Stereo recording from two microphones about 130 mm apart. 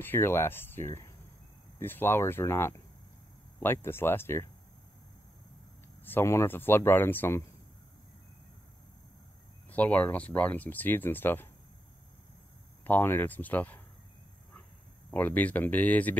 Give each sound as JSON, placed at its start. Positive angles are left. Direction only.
{"t": 0.0, "sound": "speech", "side_deg": 15}
{"t": 6.0, "sound": "speech", "side_deg": 20}
{"t": 9.7, "sound": "speech", "side_deg": 10}
{"t": 12.8, "sound": "speech", "side_deg": 15}
{"t": 15.1, "sound": "speech", "side_deg": 10}